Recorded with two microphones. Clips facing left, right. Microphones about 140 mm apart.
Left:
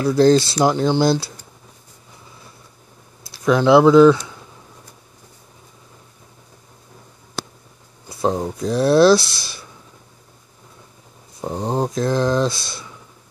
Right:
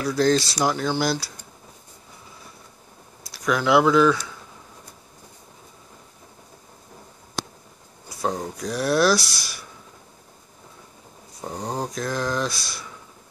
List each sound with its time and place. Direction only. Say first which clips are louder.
0.0 s speech: left 7 dB; 30° left (ahead or behind)
3.3 s speech: left 7 dB; 25° left (ahead or behind)
8.1 s speech: left 6 dB; 25° left (ahead or behind)
11.4 s speech: left 7 dB; 25° left (ahead or behind)